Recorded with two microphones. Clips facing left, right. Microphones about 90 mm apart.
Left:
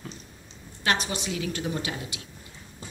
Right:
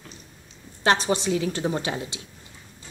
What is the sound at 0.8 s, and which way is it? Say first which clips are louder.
A woman's voice: right 6 dB; 30° right (ahead or behind).